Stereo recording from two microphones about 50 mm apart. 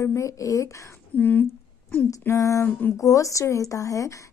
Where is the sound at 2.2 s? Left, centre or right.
Left.